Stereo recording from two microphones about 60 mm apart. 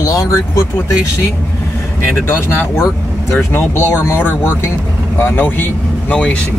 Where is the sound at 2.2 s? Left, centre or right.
Left.